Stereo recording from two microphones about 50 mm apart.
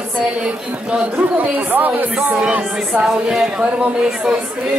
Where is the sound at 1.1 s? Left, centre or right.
Right.